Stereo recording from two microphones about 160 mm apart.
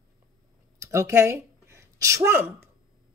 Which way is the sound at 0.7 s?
20° right (ahead or behind).